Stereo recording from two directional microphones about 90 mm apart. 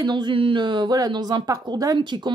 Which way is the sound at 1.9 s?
55° right (ahead or behind).